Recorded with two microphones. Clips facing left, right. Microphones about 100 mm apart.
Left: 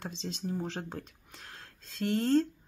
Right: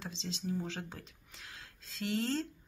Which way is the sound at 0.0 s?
50° left (ahead or behind).